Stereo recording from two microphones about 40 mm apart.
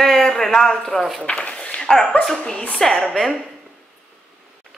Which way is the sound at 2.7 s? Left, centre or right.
Centre.